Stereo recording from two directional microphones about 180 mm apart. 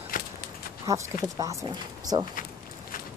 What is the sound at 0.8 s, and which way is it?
Speech, 20° right (ahead or behind).